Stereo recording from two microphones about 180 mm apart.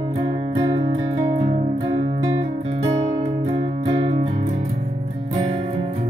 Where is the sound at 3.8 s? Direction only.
35° right (ahead or behind).